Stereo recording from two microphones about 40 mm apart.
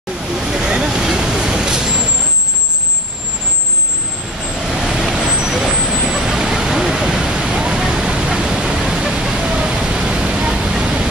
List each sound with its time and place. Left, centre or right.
0.4 s vehicle: centre
4.8 s vehicle: centre
6.9 s waterfall: centre
7.8 s vehicle: centre
8.5 s pink noise: centre
9.4 s vehicle: right
10.8 s a sound: right